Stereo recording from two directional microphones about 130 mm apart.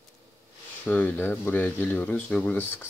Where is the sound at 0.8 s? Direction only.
15° left (ahead or behind).